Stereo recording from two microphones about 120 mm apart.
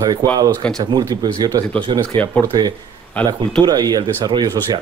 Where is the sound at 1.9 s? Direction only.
50° right (ahead or behind).